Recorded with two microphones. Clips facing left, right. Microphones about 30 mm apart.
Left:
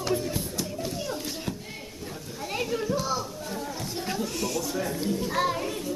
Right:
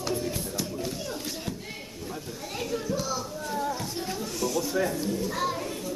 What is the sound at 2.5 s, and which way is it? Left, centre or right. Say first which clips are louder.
Children playing: left 3 dB; centre.